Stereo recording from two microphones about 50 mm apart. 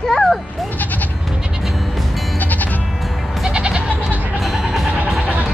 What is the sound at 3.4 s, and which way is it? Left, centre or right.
Goat, centre.